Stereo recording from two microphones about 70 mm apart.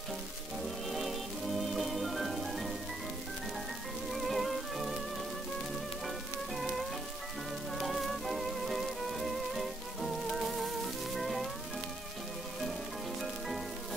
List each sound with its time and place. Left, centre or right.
0.9 s music: centre
4.1 s music: centre
6.0 s music: centre